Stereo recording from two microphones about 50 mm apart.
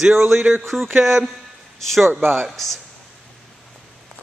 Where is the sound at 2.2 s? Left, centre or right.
Right.